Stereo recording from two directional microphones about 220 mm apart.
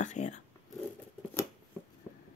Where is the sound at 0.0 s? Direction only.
35° left (ahead or behind).